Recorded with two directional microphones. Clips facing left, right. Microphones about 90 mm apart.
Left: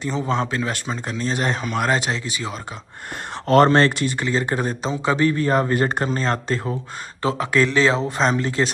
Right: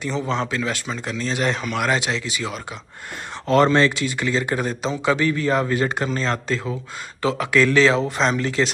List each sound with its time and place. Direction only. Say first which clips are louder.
0.5 s a man's voice: even; 35° left (ahead or behind)
3.4 s speech: left 2 dB; 50° left (ahead or behind)
4.2 s a man's voice: right 1 dB; 35° left (ahead or behind)